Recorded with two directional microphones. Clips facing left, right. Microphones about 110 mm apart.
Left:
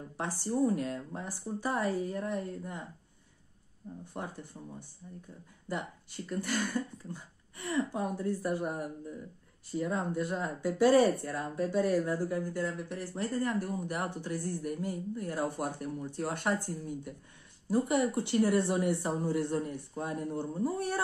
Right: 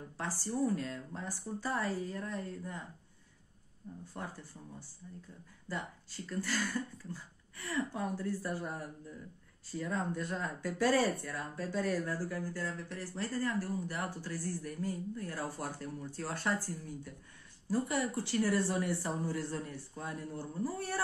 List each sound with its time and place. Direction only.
0.2 s speech: 20° left (ahead or behind)
4.0 s speech: 20° left (ahead or behind)